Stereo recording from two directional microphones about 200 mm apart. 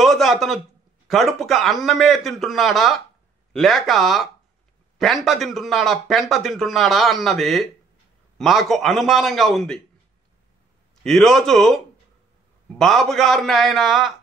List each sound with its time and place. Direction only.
0.0 s a sound: centre (ahead or behind)
1.0 s a man's voice: centre (ahead or behind)
11.1 s a man's voice: centre (ahead or behind)